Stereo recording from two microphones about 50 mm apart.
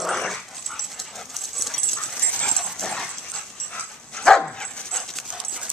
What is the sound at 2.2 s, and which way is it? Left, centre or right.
Dog, left.